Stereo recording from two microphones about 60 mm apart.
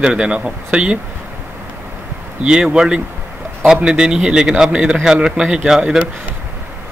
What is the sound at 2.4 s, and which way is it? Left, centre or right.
A man's voice, centre.